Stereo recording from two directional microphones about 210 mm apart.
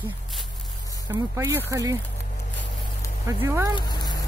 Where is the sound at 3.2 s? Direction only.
10° right (ahead or behind).